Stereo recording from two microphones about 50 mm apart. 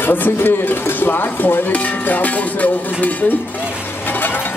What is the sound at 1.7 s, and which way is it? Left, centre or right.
Music, left.